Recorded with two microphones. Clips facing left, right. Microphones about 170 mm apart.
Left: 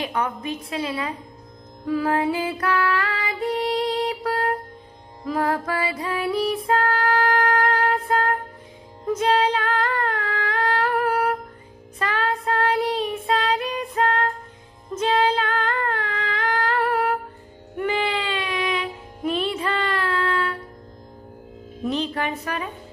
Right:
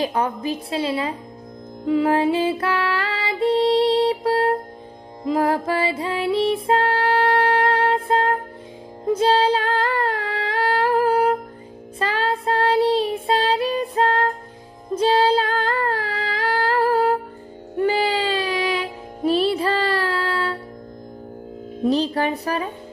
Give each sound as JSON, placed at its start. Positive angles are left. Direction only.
{"t": 0.0, "sound": "a woman's voice", "side_deg": -30}
{"t": 1.9, "sound": "music", "side_deg": -25}
{"t": 9.1, "sound": "female singing", "side_deg": -30}
{"t": 12.0, "sound": "child singing", "side_deg": -30}
{"t": 15.0, "sound": "female singing", "side_deg": -35}
{"t": 17.7, "sound": "music", "side_deg": -35}
{"t": 21.8, "sound": "speech", "side_deg": -35}